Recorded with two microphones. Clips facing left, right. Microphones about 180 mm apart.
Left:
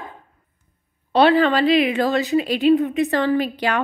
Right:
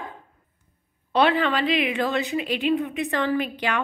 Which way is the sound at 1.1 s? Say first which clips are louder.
Left 6 dB; 35° left (ahead or behind).